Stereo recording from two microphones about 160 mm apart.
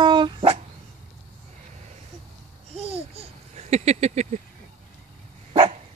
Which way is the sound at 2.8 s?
40° right (ahead or behind).